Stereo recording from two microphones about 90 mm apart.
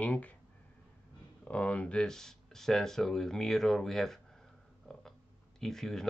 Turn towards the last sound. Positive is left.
turn(degrees=5)  # may be behind; listen again after turning